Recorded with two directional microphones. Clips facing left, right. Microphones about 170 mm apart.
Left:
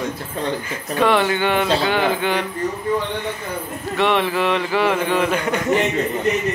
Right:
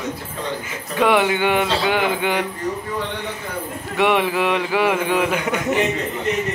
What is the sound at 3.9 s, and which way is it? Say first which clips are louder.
Mantra: right 1 dB; 10° right (ahead or behind).